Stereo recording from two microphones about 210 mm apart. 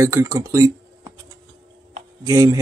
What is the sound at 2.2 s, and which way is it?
Speech, 15° right (ahead or behind).